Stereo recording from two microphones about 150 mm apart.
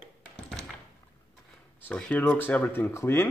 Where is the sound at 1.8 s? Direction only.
10° left (ahead or behind).